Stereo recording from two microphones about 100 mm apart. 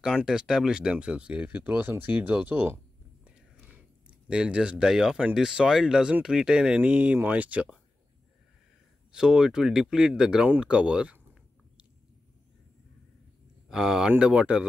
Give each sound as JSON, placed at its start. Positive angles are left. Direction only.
{"t": 0.0, "sound": "speech", "side_deg": -5}
{"t": 9.1, "sound": "speech", "side_deg": -5}
{"t": 13.7, "sound": "speech", "side_deg": -5}